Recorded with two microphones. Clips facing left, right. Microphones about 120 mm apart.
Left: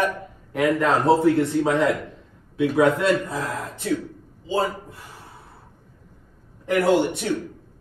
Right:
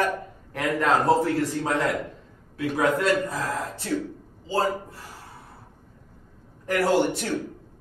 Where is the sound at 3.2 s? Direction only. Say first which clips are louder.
Even; 20° left (ahead or behind).